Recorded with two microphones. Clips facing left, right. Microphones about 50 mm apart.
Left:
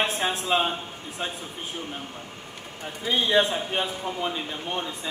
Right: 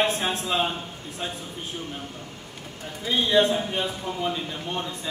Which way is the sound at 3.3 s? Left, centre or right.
Centre.